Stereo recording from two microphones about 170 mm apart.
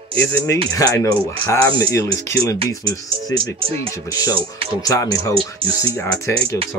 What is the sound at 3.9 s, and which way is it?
Speech, 20° left (ahead or behind).